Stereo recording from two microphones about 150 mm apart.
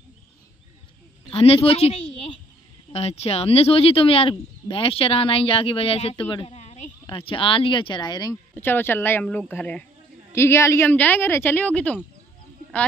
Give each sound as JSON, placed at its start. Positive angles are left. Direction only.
{"t": 1.3, "sound": "speech", "side_deg": 40}
{"t": 8.5, "sound": "a woman's voice", "side_deg": 15}